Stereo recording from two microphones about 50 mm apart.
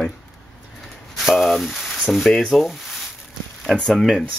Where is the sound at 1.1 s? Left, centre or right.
Centre.